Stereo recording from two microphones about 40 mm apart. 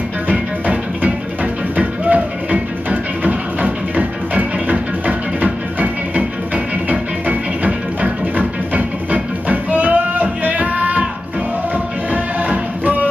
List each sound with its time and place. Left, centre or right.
0.3 s music: right
12.1 s music: right